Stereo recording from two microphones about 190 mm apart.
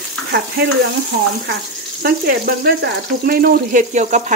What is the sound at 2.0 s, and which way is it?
Speech, 55° right (ahead or behind).